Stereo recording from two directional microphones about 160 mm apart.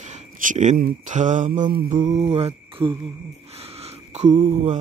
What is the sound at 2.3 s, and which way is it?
Speech, 35° right (ahead or behind).